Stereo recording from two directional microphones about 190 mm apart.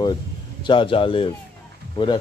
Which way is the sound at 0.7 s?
25° left (ahead or behind).